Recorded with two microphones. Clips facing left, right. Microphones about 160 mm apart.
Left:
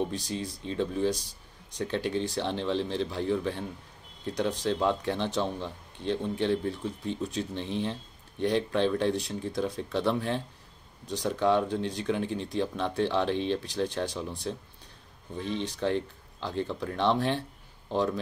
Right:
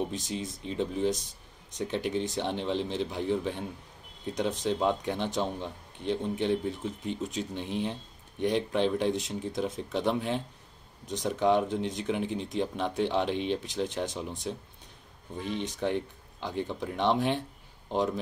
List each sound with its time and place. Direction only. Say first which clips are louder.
0.0 s speech: left 1 dB; 20° right (ahead or behind)